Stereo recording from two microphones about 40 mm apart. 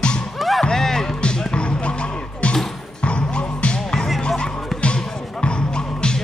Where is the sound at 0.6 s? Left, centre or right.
Centre.